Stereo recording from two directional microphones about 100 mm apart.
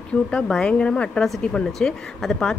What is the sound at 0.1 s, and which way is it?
Speech, 10° left (ahead or behind).